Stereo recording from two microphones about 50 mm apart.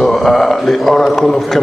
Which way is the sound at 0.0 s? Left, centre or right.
Centre.